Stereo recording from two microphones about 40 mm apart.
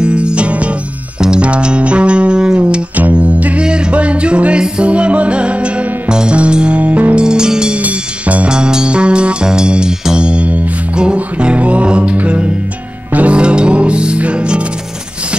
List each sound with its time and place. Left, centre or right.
0.0 s music: right
3.0 s music: right
7.2 s music: centre
7.8 s music: right
8.5 s music: centre; by 13.4 s right
13.4 s music: right